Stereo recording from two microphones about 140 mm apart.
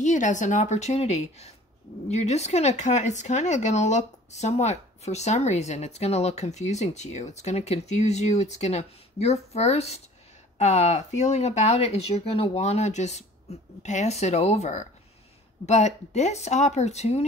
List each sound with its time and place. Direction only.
0.0 s speech: 60° left (ahead or behind)